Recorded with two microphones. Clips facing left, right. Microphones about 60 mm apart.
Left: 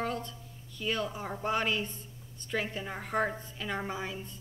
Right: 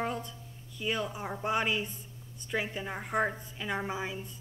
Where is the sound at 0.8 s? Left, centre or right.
Centre.